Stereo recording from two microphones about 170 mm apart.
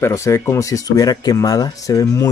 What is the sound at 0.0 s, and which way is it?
Speech, 15° left (ahead or behind).